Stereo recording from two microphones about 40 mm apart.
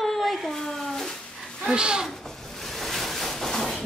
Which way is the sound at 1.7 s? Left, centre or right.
Right.